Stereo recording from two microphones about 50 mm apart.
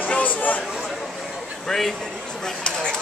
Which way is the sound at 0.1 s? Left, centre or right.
Left.